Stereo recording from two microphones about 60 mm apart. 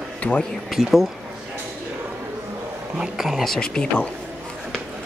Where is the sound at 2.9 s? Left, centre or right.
Centre.